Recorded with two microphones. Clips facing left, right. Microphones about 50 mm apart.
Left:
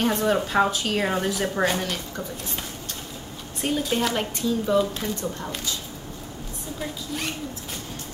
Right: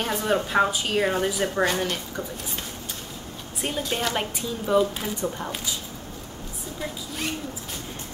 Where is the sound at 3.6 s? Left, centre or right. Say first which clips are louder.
Left 3 dB; centre.